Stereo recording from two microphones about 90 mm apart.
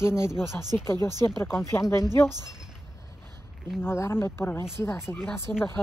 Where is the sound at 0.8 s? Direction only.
30° left (ahead or behind).